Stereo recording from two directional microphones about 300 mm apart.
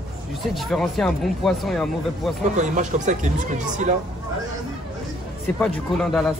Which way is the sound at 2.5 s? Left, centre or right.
Right.